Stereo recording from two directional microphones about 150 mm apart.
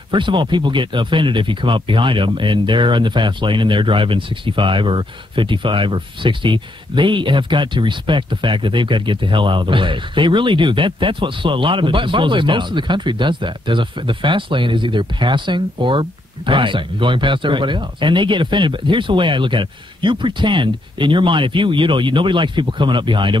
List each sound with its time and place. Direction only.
0.1 s speech: 35° right (ahead or behind)